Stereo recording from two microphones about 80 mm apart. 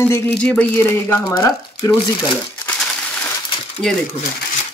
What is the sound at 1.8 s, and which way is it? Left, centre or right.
Speech, left.